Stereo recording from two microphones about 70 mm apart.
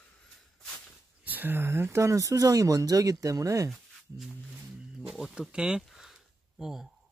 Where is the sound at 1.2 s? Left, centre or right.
Right.